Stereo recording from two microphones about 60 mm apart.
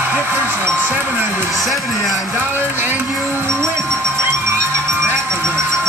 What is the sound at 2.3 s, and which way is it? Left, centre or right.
Speech, right.